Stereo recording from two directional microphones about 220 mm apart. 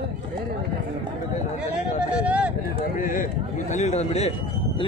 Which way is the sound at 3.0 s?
35° left (ahead or behind).